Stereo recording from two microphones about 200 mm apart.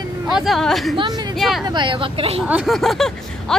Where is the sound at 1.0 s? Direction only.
20° right (ahead or behind).